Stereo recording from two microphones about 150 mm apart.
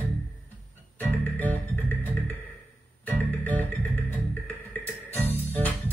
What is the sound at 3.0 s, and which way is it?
Guitar, 10° left (ahead or behind).